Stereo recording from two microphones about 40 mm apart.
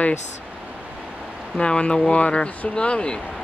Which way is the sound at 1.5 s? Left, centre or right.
Left.